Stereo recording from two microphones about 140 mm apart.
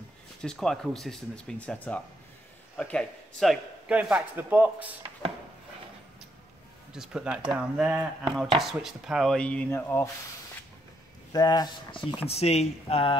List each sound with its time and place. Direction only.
0.4 s speech: 5° left (ahead or behind)
3.9 s speech: 10° right (ahead or behind)
6.9 s speech: 5° right (ahead or behind); by 10.0 s 20° left (ahead or behind)
11.3 s speech: 30° left (ahead or behind)
12.3 s speech: 50° left (ahead or behind)